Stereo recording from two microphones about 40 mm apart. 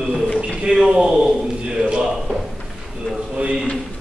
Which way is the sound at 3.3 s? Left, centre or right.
Right.